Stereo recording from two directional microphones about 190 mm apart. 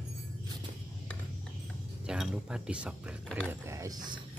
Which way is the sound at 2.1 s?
5° right (ahead or behind).